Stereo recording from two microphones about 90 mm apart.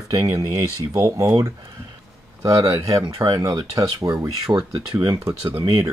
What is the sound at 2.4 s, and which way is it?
Speech, 40° right (ahead or behind).